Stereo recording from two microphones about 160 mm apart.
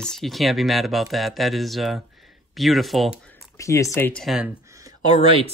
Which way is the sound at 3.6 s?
20° left (ahead or behind).